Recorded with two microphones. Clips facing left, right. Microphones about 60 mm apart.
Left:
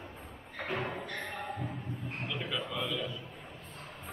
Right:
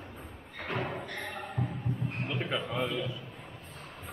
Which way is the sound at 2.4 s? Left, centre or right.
Right.